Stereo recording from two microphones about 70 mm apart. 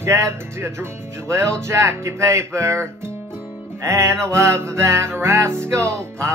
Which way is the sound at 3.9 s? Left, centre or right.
Right.